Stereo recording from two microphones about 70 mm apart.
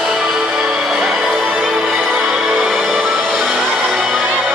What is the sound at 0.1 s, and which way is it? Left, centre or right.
Music, centre.